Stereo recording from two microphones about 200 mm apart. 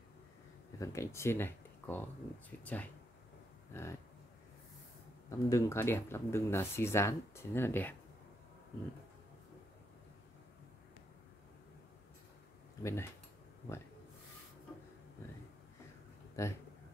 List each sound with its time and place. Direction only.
0.7 s speech: 15° left (ahead or behind)
5.3 s speech: 15° left (ahead or behind)
12.8 s speech: 15° left (ahead or behind)
16.4 s speech: 15° left (ahead or behind)